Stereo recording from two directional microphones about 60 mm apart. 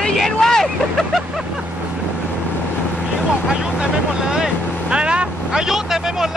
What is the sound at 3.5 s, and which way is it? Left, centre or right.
Vehicle, centre.